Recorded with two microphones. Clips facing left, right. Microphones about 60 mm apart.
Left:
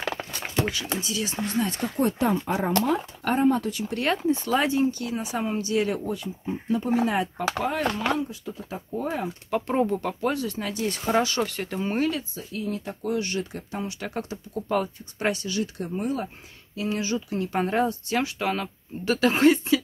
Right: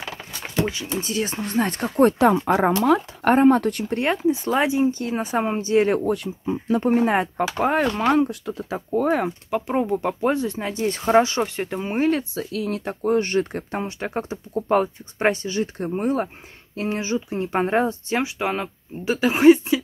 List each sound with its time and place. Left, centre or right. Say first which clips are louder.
0.9 s speech: right 4 dB; right
2.1 s speech: right 7 dB; right
3.2 s speech: right 6 dB; right
3.9 s speech: right 2 dB; right
5.0 s speech: right 5 dB; right
5.9 s speech: right 7 dB; right
6.8 s speech: right 5 dB; right
9.5 s speech: even; centre
12.2 s speech: right 6 dB; right
13.0 s speech: right 8 dB; right
13.9 s speech: right 5 dB; right